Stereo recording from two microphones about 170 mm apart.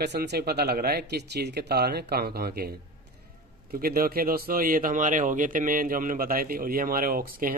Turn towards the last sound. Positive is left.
turn(degrees=-60)  # may be behind; listen again after turning